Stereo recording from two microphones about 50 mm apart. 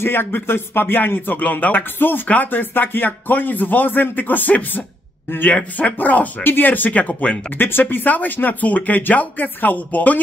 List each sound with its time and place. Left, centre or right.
0.0 s speech: left
7.5 s speech: left